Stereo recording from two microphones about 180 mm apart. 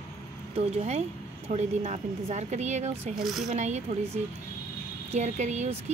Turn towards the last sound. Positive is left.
turn(degrees=-40)  # may be behind; listen again after turning